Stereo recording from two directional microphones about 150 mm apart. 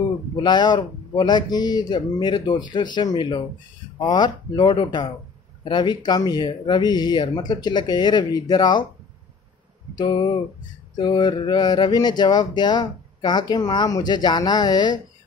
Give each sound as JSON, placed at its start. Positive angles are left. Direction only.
{"t": 0.4, "sound": "speech", "side_deg": 30}
{"t": 9.9, "sound": "speech", "side_deg": 30}